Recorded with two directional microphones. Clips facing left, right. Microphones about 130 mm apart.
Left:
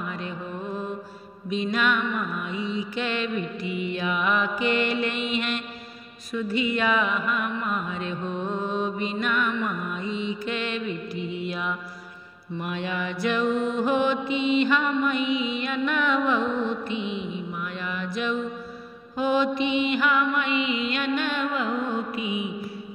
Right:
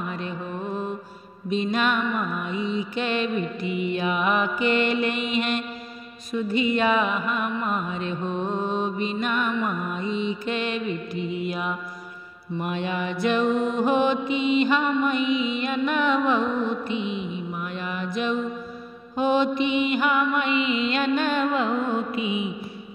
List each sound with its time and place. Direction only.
1.5 s mantra: 30° right (ahead or behind)
6.5 s mantra: 25° right (ahead or behind)
11.4 s music: 15° right (ahead or behind)
12.5 s mantra: 25° right (ahead or behind)
16.4 s music: 10° right (ahead or behind)
17.7 s mantra: 20° right (ahead or behind)
19.6 s mantra: 20° left (ahead or behind)
20.0 s mantra: 20° right (ahead or behind)
20.5 s mantra: 20° left (ahead or behind)
20.8 s mantra: 35° right (ahead or behind)